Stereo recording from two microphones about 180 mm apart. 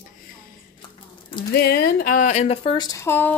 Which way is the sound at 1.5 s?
60° left (ahead or behind).